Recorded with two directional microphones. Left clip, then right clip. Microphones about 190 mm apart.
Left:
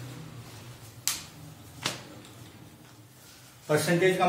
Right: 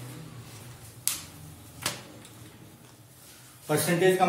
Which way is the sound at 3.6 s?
20° right (ahead or behind).